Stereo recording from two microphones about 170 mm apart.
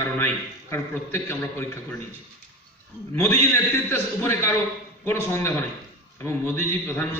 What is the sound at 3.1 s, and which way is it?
A man's voice, 10° left (ahead or behind).